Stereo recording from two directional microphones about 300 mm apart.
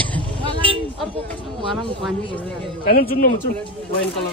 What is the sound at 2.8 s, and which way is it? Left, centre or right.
Speech, left.